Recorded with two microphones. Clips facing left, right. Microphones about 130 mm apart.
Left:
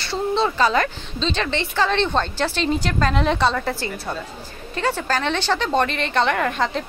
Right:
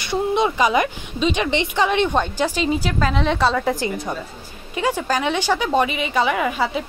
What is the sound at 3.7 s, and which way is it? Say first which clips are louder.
A woman's voice: right 4 dB; 15° right (ahead or behind).